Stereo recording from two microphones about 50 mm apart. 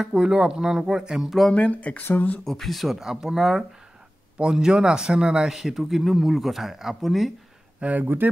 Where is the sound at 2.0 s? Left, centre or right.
Left.